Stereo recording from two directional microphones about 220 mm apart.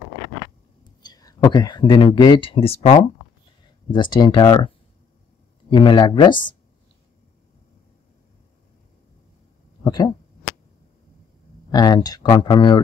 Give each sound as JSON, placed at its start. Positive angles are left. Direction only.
{"t": 1.0, "sound": "speech", "side_deg": 15}
{"t": 9.8, "sound": "speech", "side_deg": 20}
{"t": 11.7, "sound": "speech", "side_deg": 20}